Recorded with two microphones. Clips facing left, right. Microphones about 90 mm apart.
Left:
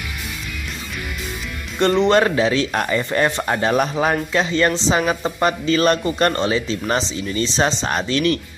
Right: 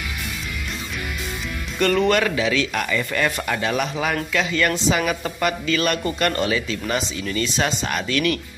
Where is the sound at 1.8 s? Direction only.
30° left (ahead or behind).